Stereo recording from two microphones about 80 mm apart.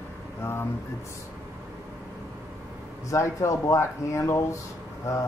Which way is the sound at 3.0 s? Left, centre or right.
Left.